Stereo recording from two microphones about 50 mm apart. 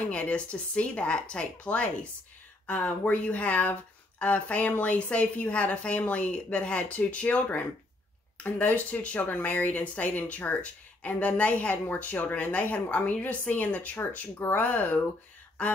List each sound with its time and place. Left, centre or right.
0.1 s a woman's voice: left